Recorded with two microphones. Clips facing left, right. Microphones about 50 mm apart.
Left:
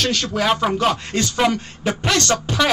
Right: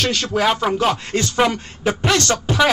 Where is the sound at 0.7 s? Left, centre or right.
Centre.